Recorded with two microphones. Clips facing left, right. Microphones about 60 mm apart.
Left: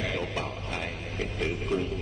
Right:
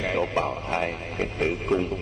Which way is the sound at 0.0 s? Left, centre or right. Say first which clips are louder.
Right 7 dB; right.